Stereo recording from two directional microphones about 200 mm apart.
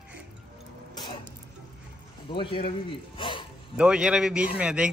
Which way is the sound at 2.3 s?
25° left (ahead or behind).